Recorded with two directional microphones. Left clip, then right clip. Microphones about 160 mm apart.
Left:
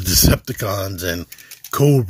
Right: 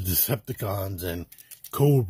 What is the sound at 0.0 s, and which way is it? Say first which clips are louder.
Speech: left 13 dB; 10° left (ahead or behind).